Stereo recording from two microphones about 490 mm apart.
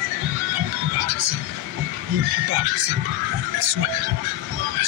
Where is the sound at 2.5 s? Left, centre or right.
Right.